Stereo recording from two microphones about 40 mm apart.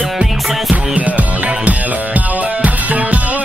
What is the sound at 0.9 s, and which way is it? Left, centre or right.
Music, right.